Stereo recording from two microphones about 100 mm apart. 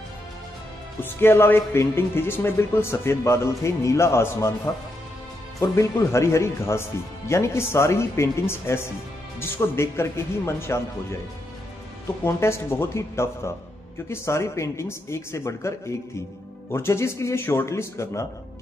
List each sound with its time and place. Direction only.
1.0 s speech: 25° left (ahead or behind)
5.6 s speech: 30° left (ahead or behind)
12.2 s speech: 25° left (ahead or behind)
16.7 s speech: 25° left (ahead or behind)